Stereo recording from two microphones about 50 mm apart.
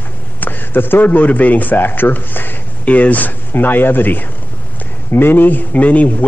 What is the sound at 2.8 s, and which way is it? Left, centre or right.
Speech, left.